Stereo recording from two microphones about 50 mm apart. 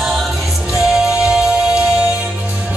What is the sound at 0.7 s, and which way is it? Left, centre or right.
Music, centre.